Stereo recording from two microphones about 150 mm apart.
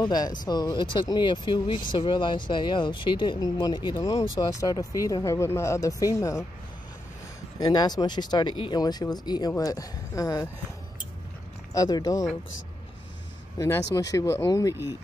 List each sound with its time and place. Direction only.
0.0 s speech: 30° left (ahead or behind)
7.5 s speech: 25° left (ahead or behind)
11.7 s speech: 25° left (ahead or behind)
13.6 s speech: 20° left (ahead or behind)